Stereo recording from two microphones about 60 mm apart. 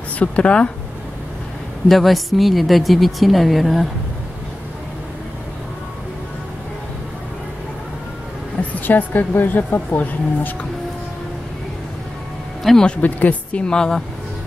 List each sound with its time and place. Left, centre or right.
0.2 s speech: centre
1.9 s a woman's voice: centre
8.8 s speech: left
12.8 s speech: left